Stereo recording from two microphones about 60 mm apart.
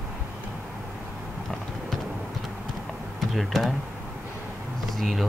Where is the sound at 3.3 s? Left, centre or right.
Centre.